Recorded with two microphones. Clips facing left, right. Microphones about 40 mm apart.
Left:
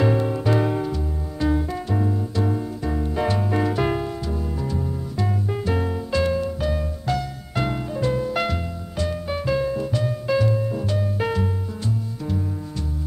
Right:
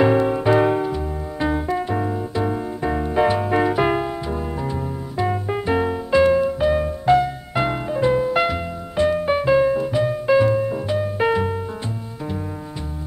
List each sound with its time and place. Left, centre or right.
0.0 s music: right
8.9 s music: right